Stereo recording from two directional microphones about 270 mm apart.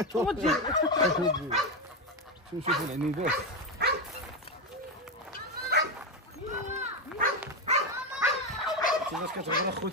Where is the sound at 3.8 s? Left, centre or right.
Right.